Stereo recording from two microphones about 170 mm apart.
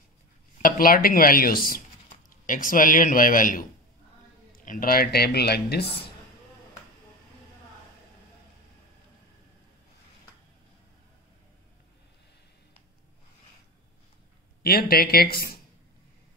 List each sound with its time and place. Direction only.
0.6 s a man's voice: 55° left (ahead or behind)
4.6 s speech: 60° left (ahead or behind)
14.6 s speech: 65° left (ahead or behind)